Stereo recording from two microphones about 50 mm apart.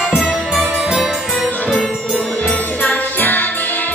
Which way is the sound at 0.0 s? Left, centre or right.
Centre.